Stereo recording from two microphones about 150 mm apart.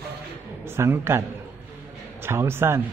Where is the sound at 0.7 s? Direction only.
15° right (ahead or behind).